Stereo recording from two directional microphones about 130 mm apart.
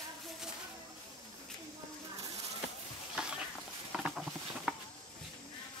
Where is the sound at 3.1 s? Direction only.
5° right (ahead or behind).